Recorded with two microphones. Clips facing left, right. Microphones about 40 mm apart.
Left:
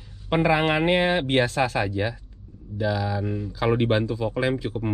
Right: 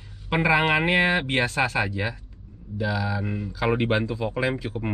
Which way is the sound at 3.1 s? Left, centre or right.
Right.